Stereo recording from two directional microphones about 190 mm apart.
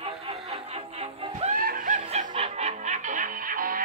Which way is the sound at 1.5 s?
50° right (ahead or behind).